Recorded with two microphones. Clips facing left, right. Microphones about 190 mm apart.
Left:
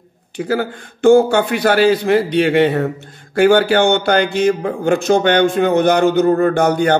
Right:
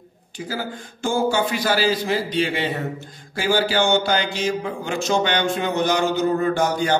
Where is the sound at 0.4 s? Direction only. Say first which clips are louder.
Left 9 dB; 65° left (ahead or behind).